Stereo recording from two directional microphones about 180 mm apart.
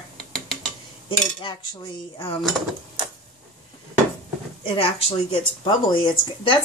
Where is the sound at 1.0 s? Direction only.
25° left (ahead or behind).